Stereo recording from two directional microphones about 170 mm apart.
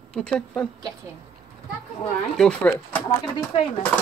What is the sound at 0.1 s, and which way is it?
Speech, 5° left (ahead or behind).